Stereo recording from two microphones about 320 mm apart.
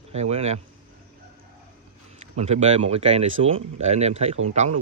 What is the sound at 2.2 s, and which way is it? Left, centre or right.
Speech, centre.